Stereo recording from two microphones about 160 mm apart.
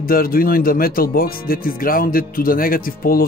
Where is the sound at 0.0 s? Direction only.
65° left (ahead or behind).